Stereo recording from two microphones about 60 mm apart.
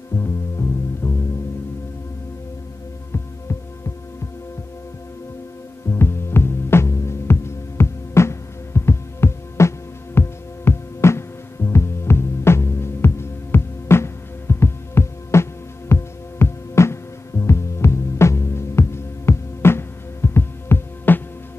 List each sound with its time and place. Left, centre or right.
0.1 s music: left
5.9 s music: left